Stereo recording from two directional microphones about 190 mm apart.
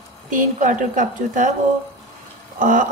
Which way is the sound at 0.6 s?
40° right (ahead or behind).